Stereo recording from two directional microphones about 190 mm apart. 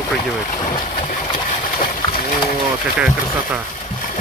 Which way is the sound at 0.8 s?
45° left (ahead or behind).